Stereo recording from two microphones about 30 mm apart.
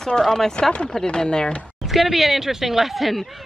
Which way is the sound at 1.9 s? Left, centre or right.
Centre.